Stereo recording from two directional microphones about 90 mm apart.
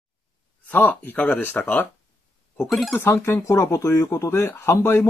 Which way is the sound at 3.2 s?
30° left (ahead or behind).